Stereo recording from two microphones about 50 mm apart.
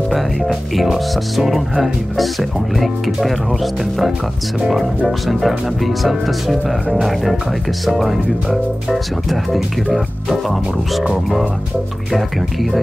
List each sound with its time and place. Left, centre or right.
0.1 s speech: centre
12.1 s speech: centre